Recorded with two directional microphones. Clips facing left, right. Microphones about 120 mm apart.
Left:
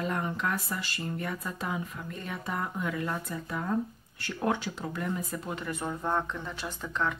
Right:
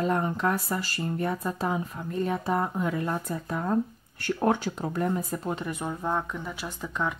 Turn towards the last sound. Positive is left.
turn(degrees=-10)  # may be behind; listen again after turning